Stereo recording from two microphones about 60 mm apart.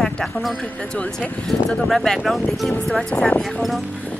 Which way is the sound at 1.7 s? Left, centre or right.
Centre.